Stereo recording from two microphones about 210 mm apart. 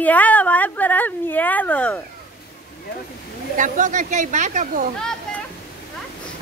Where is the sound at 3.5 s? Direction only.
40° right (ahead or behind).